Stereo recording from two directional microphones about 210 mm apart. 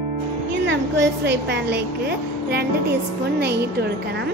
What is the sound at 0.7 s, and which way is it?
A woman's voice, 55° right (ahead or behind).